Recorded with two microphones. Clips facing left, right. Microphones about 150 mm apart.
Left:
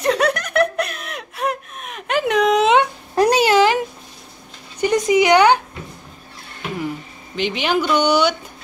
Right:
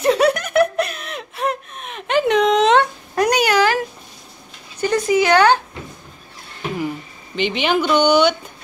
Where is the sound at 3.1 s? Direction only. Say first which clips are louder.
Left 2 dB; 30° left (ahead or behind).